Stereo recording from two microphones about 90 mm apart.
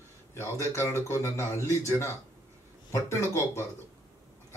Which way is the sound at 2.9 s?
35° left (ahead or behind).